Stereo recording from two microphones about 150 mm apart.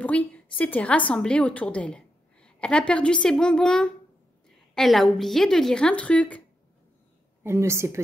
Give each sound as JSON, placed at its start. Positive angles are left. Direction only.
{"t": 0.0, "sound": "a sound", "side_deg": 10}
{"t": 0.6, "sound": "a woman's voice", "side_deg": 10}
{"t": 7.4, "sound": "a woman's voice", "side_deg": -15}